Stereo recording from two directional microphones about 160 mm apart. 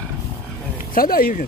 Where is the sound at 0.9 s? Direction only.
65° left (ahead or behind).